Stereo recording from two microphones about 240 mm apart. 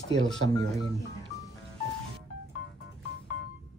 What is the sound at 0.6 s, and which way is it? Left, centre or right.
Speech, centre.